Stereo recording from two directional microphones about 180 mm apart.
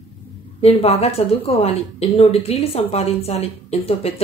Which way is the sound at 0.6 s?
35° left (ahead or behind).